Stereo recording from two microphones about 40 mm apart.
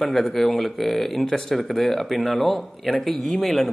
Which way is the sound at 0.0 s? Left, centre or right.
Centre.